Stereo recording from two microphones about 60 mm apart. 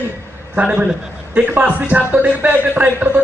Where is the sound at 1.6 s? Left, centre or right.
Right.